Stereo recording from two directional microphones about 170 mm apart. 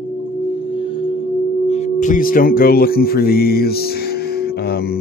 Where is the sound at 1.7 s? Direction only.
45° left (ahead or behind).